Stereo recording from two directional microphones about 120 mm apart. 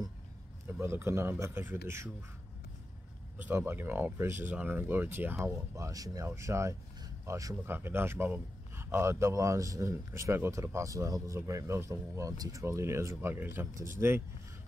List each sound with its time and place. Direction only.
0.7 s a man's voice: 20° right (ahead or behind)
3.4 s a man's voice: 20° right (ahead or behind)